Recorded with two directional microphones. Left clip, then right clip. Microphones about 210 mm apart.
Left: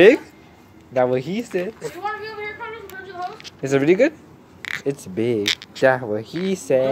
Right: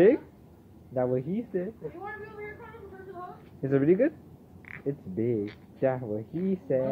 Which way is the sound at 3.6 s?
15° left (ahead or behind).